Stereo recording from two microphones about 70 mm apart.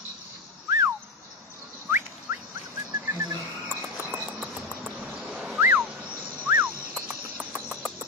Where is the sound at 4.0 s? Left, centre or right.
Right.